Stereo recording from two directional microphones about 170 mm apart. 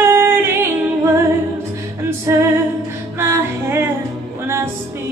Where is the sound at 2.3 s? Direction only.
15° right (ahead or behind).